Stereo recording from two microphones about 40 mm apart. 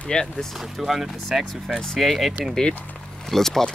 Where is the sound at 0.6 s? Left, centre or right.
Centre.